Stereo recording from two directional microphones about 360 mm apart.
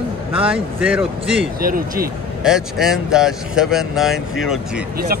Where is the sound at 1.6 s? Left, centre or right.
Right.